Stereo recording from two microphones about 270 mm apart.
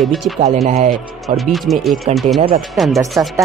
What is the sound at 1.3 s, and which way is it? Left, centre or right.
Speech, centre.